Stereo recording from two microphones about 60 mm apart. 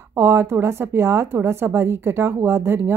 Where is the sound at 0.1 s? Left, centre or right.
Right.